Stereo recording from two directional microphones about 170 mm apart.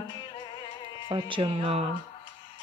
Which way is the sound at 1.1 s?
30° right (ahead or behind).